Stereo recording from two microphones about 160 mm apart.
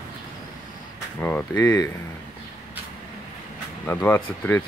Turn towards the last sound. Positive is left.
turn(degrees=15)  # may be behind; listen again after turning